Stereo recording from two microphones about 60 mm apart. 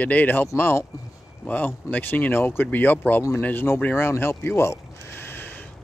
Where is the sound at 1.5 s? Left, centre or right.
Left.